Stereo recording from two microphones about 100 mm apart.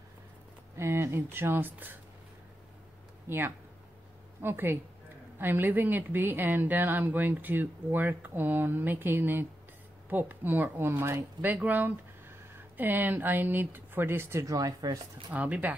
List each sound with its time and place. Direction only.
0.7 s speech: 25° right (ahead or behind)
3.3 s speech: 25° right (ahead or behind); by 15.0 s 40° right (ahead or behind)
15.3 s speech: 15° right (ahead or behind)